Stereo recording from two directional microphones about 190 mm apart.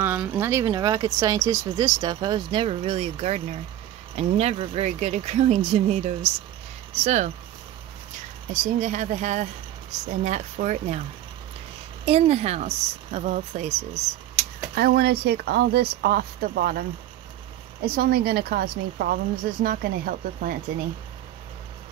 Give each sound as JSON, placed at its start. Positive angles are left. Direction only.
{"t": 0.0, "sound": "a woman's voice", "side_deg": -10}
{"t": 8.7, "sound": "a woman's voice", "side_deg": -40}
{"t": 12.0, "sound": "a woman's voice", "side_deg": -30}
{"t": 14.8, "sound": "speech", "side_deg": -55}
{"t": 17.8, "sound": "a woman's voice", "side_deg": -50}